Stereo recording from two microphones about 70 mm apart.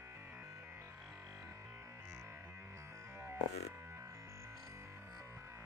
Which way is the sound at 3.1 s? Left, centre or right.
Right.